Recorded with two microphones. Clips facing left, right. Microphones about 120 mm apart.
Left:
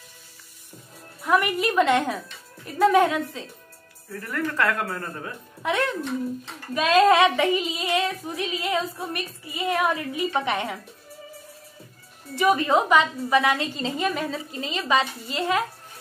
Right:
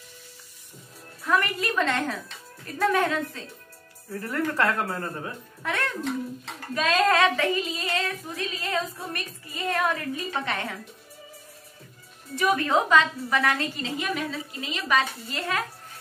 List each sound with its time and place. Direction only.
1.2 s female singing: 15° left (ahead or behind)
4.1 s a woman's voice: 25° right (ahead or behind)
5.6 s female singing: 15° left (ahead or behind)
12.4 s female singing: 15° left (ahead or behind)
13.7 s a woman's voice: 35° left (ahead or behind)
14.9 s female singing: 15° left (ahead or behind)